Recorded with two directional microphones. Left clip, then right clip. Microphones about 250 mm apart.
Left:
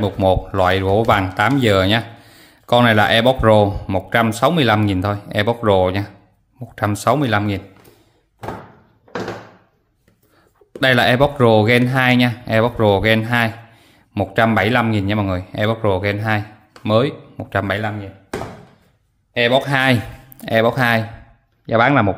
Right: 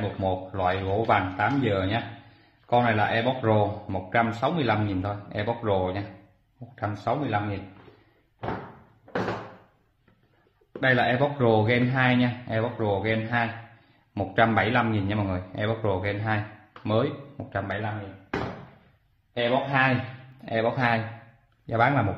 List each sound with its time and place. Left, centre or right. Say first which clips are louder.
0.2 s speech: left 11 dB; left
10.8 s speech: left 9 dB; left
19.3 s speech: left 8 dB; left
20.4 s speech: left 9 dB; left